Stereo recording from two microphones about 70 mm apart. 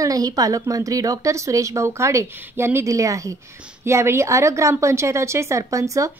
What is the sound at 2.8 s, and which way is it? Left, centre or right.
Speech, right.